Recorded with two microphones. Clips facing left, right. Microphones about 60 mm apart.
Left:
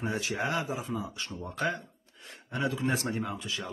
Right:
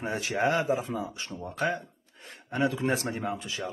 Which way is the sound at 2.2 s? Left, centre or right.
Right.